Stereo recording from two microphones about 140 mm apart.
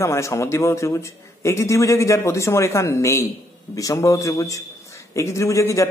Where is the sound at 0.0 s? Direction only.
20° left (ahead or behind).